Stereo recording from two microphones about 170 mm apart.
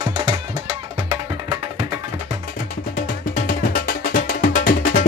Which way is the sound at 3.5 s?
60° left (ahead or behind).